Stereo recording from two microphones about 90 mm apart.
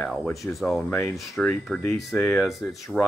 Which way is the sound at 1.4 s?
10° left (ahead or behind).